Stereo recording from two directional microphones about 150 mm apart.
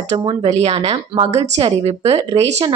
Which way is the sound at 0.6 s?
45° right (ahead or behind).